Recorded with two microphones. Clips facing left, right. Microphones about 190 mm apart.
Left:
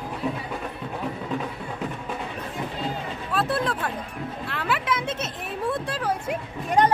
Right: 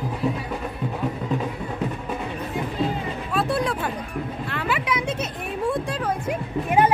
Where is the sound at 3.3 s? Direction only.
Centre (ahead or behind).